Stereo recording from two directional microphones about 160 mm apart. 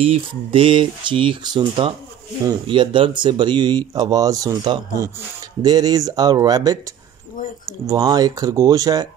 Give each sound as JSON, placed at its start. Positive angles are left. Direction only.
{"t": 0.0, "sound": "speech", "side_deg": -35}
{"t": 7.9, "sound": "speech", "side_deg": -25}